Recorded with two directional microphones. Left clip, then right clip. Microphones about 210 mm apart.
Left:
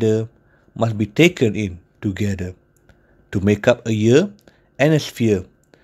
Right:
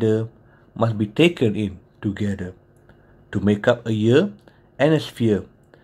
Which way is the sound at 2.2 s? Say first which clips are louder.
Left 2 dB; 50° left (ahead or behind).